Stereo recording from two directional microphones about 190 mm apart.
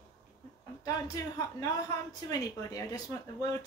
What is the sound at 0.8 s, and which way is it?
Speech, 20° left (ahead or behind).